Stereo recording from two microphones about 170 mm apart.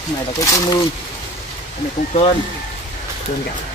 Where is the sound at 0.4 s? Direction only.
20° left (ahead or behind).